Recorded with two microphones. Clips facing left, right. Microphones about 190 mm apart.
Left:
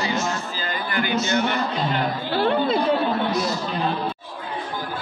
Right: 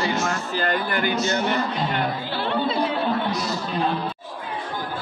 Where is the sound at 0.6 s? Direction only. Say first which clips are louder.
Right 5 dB; 65° right (ahead or behind).